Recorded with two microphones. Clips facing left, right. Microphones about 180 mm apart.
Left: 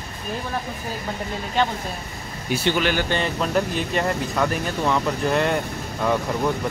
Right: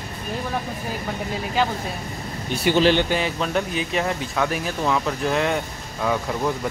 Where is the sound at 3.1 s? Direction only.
5° right (ahead or behind).